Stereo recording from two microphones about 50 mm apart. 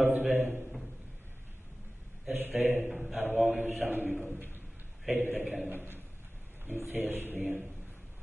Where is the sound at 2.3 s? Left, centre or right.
Right.